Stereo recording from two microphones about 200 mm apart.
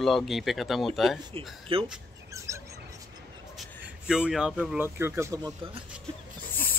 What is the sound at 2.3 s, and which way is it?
Bird, 15° right (ahead or behind).